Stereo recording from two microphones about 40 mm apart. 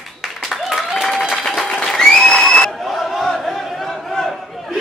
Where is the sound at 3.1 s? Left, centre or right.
Centre.